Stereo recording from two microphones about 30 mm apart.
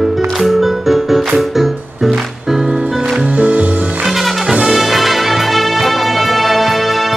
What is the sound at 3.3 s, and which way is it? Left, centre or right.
Music, right.